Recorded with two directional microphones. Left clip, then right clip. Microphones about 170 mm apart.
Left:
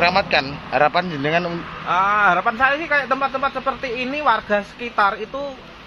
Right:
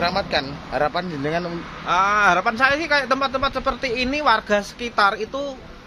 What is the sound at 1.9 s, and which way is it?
Speech, 30° right (ahead or behind).